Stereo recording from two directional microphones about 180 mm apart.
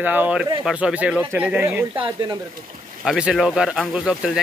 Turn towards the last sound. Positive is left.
turn(degrees=-5)  # may be behind; listen again after turning